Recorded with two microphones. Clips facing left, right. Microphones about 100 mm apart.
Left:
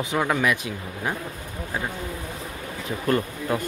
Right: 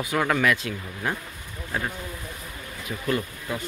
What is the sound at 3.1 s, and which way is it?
Speech, 45° left (ahead or behind).